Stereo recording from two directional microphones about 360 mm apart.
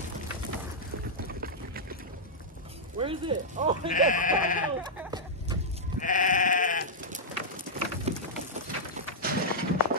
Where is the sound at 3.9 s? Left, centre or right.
Left.